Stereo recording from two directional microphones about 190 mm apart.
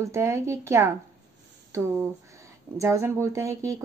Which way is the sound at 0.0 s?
15° right (ahead or behind).